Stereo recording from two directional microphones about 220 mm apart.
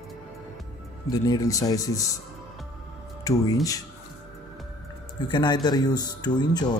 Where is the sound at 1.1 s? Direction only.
15° left (ahead or behind).